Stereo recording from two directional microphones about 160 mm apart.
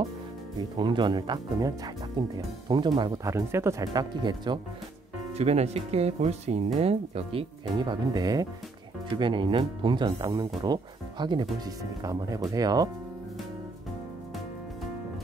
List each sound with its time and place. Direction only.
0.6 s speech: 30° right (ahead or behind)
5.3 s speech: 40° right (ahead or behind); by 12.9 s 25° right (ahead or behind)